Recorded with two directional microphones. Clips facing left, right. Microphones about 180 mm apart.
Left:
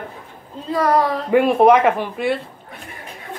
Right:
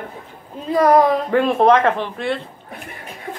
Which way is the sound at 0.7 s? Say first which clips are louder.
Right 4 dB; 20° right (ahead or behind).